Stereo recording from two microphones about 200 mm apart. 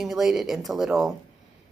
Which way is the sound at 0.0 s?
Centre (ahead or behind).